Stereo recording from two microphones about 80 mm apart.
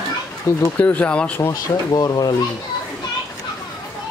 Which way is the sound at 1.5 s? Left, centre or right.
Left.